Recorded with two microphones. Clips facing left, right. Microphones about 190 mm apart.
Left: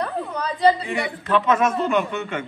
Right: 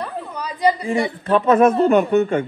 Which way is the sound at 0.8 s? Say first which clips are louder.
Right 5 dB; 35° right (ahead or behind).